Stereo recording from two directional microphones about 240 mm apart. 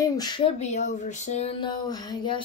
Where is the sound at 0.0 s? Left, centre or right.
Centre.